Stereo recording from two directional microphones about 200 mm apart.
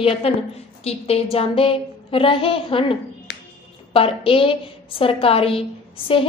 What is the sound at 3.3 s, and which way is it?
Music, 55° left (ahead or behind).